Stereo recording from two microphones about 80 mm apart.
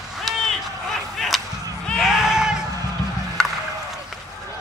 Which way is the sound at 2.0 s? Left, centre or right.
Centre.